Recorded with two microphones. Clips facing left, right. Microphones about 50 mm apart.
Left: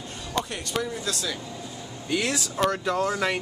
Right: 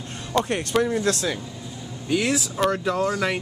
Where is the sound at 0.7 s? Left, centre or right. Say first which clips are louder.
Right 8 dB; right.